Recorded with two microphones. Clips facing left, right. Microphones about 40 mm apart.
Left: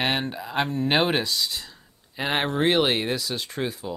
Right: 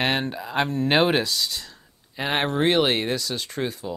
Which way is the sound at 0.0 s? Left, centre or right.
Centre.